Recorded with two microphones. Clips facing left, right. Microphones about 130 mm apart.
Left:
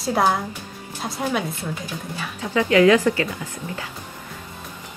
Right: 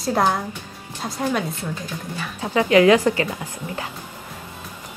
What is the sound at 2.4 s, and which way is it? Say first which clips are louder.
Speech: right 1 dB; 35° right (ahead or behind).